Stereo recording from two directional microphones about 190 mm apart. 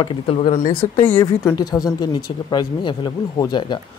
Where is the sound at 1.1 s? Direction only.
20° left (ahead or behind).